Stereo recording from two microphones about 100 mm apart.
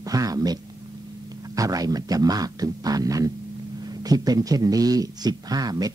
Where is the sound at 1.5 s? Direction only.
35° right (ahead or behind).